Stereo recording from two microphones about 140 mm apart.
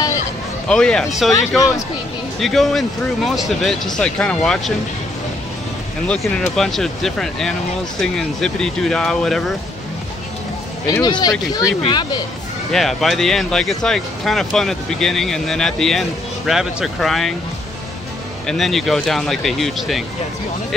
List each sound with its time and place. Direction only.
0.7 s speech: 5° left (ahead or behind)
2.4 s speech: centre (ahead or behind)
6.0 s speech: 5° left (ahead or behind)
10.9 s speech: 30° left (ahead or behind)
12.7 s speech: centre (ahead or behind)
18.5 s speech: centre (ahead or behind)